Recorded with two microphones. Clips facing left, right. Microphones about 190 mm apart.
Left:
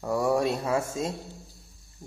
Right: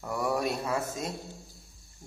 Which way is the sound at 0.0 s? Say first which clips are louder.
Left 5 dB; 25° left (ahead or behind).